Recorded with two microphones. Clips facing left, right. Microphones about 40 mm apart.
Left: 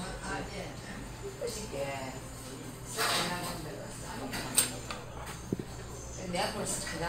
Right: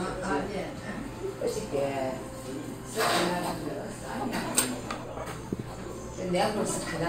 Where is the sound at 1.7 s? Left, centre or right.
Centre.